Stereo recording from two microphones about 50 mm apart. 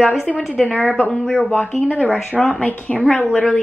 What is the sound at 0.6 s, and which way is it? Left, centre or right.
Speech, centre.